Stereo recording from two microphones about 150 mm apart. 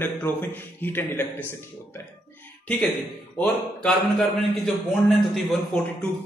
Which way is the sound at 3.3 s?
5° left (ahead or behind).